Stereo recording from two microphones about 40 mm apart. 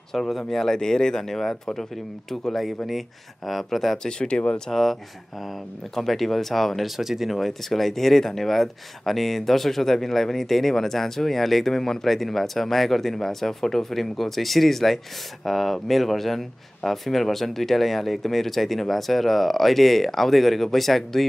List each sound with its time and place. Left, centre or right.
0.1 s a man's voice: centre
4.2 s speech: left
4.6 s speech: centre
5.9 s a man's voice: centre
7.0 s speech: centre
7.3 s a man's voice: centre